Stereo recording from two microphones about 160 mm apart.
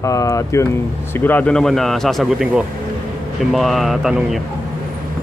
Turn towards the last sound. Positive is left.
turn(degrees=0)  # may be behind; listen again after turning